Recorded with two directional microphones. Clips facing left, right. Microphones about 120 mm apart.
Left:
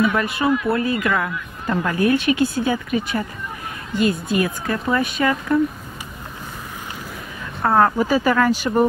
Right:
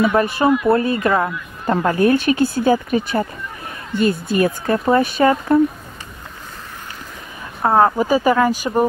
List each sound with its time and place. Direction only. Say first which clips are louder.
0.0 s speech: right 4 dB; 30° right (ahead or behind)
7.6 s speech: right 2 dB; 20° right (ahead or behind)